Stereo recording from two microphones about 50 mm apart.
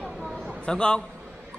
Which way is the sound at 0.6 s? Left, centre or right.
Centre.